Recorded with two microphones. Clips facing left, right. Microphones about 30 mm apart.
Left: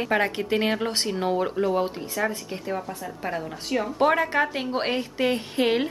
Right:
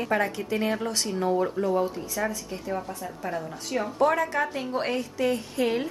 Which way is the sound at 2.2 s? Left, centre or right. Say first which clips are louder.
Left 3 dB; left.